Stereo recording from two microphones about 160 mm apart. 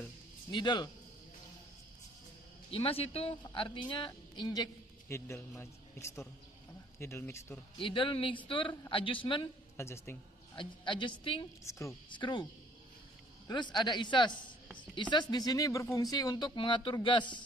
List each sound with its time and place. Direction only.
0.5 s speech: 30° left (ahead or behind)
2.7 s a man's voice: 35° left (ahead or behind); by 7.6 s 15° left (ahead or behind)
7.8 s speech: 30° left (ahead or behind)
9.8 s speech: 15° left (ahead or behind)
10.5 s speech: 30° left (ahead or behind)
13.5 s speech: 30° left (ahead or behind)